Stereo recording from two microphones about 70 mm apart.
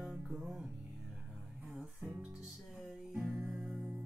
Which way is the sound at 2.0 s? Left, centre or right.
Right.